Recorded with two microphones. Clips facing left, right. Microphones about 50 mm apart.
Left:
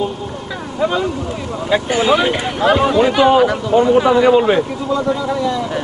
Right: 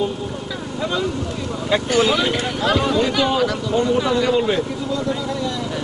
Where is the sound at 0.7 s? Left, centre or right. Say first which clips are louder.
Left 6 dB; left.